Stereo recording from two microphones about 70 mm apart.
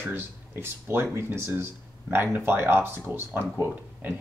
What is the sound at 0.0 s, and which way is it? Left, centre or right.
Speech, right.